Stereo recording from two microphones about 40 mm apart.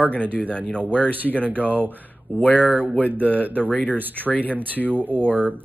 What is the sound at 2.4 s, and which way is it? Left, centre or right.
Speech, left.